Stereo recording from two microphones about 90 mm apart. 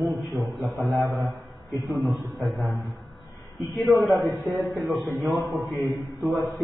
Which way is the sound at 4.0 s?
Centre (ahead or behind).